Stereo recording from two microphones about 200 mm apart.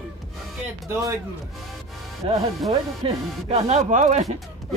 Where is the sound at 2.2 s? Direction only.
25° right (ahead or behind).